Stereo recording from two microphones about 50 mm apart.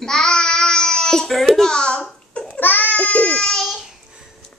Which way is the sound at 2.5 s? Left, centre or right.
Left.